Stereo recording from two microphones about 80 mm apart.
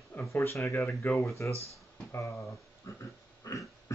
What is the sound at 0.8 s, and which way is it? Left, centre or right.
Speech, centre.